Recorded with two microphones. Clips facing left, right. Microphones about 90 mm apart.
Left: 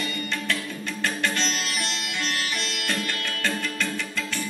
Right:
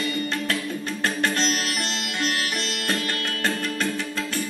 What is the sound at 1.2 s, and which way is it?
Sitar, 40° right (ahead or behind).